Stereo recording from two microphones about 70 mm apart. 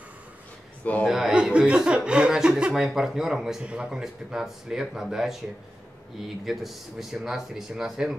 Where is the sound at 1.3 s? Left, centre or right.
Centre.